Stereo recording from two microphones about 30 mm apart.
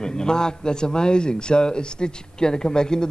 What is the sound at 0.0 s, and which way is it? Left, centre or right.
A man's voice, left.